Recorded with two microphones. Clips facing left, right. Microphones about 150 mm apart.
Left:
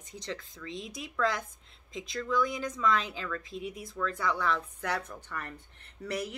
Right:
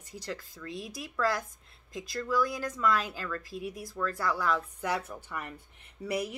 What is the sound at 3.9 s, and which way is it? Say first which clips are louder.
Speech: even; 5° right (ahead or behind).